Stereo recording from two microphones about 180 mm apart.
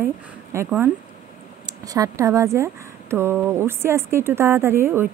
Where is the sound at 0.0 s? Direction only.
15° right (ahead or behind).